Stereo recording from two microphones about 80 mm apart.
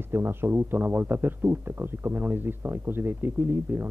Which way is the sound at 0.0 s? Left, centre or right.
Right.